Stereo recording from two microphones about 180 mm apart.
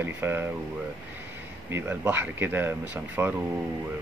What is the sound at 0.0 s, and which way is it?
Speech, 10° right (ahead or behind).